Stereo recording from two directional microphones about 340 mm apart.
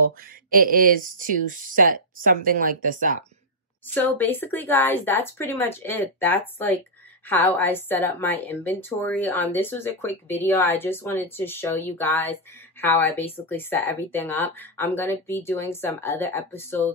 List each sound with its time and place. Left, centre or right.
0.5 s speech: right
3.9 s a woman's voice: centre